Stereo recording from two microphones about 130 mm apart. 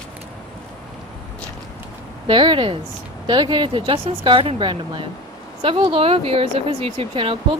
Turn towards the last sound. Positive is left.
turn(degrees=-45)  # may be behind; listen again after turning